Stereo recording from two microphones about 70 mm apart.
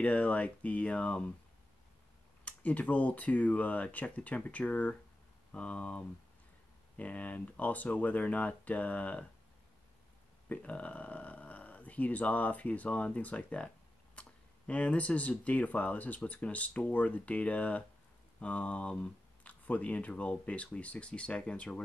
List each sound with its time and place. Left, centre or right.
0.0 s speech: centre
2.4 s speech: left
10.5 s speech: centre
14.7 s speech: centre